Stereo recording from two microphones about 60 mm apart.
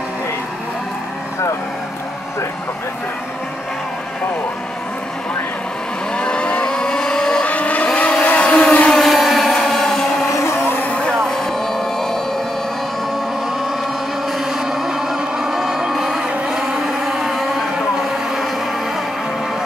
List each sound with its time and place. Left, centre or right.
6.1 s vehicle: centre
7.4 s vehicle: left
8.9 s a sound: centre
10.4 s vehicle: left
11.1 s vehicle: centre
14.4 s a sound: centre